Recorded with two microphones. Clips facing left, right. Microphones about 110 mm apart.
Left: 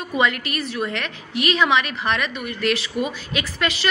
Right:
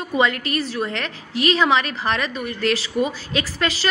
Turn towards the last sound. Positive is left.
turn(degrees=-30)  # may be behind; listen again after turning